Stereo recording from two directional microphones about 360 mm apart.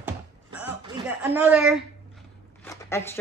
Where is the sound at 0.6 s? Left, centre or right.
Centre.